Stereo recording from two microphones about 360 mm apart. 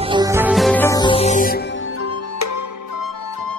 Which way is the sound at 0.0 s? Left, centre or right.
Centre.